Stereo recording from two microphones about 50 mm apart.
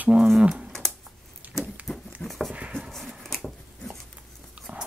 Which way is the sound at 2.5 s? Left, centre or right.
Right.